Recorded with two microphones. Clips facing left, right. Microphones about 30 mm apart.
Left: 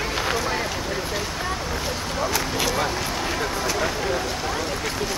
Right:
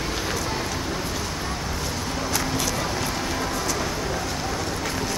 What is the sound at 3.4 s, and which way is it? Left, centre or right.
Vehicle, centre.